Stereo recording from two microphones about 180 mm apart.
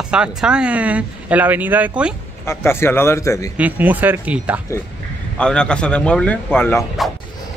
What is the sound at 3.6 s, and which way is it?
Speech, 10° right (ahead or behind).